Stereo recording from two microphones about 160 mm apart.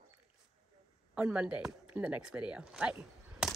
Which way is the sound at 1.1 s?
5° right (ahead or behind).